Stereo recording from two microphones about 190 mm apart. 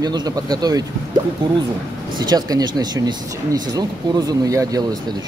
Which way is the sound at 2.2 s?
20° right (ahead or behind).